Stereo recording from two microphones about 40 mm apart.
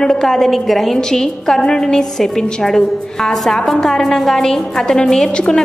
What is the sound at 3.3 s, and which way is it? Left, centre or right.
A woman's voice, centre.